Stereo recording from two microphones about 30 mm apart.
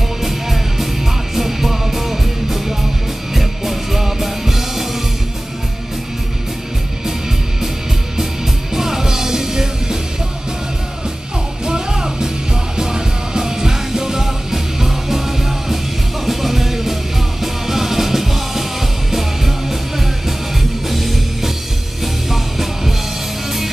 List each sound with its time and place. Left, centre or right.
0.2 s music: centre
8.7 s music: centre
11.6 s music: right
20.9 s music: centre